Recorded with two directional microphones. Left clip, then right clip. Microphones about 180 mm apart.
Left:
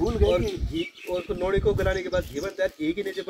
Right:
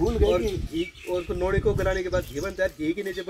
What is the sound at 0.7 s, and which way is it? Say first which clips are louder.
Speech: left 1 dB; 30° left (ahead or behind).